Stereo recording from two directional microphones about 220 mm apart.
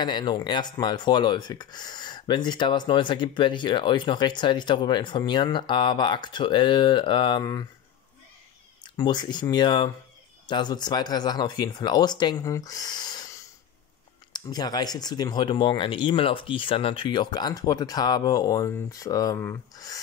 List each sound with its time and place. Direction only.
0.0 s speech: 20° left (ahead or behind)
8.8 s speech: 20° left (ahead or behind)